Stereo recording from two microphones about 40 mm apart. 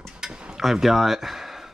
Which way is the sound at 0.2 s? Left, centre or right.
Right.